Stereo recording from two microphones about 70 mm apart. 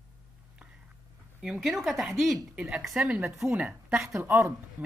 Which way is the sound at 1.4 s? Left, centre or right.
Centre.